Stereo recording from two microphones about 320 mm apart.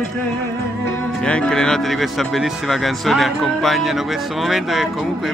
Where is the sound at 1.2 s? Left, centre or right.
Centre.